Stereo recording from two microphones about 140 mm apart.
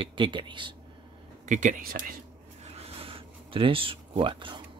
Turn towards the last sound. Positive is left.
turn(degrees=-35)  # may be behind; listen again after turning